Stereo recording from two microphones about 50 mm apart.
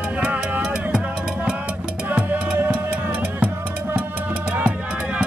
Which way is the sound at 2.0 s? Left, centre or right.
Right.